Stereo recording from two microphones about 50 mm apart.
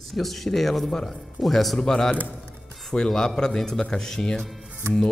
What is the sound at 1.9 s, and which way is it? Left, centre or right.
A woman's voice, centre.